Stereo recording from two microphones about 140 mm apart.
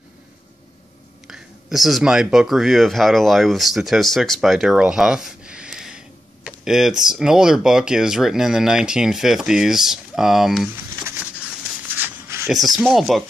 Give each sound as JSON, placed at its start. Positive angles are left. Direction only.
{"t": 1.2, "sound": "speech", "side_deg": 0}
{"t": 12.0, "sound": "rub", "side_deg": -20}
{"t": 12.4, "sound": "speech", "side_deg": 0}